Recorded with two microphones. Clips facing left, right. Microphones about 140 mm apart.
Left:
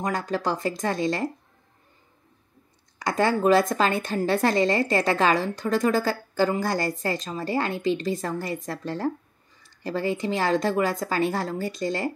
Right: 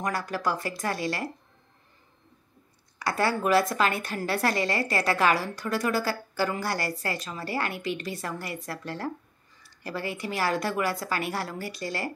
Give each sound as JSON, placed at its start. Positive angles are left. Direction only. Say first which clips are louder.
{"t": 0.0, "sound": "a woman's voice", "louder": "left 3 dB", "side_deg": 20}
{"t": 3.0, "sound": "a woman's voice", "louder": "left 4 dB", "side_deg": 20}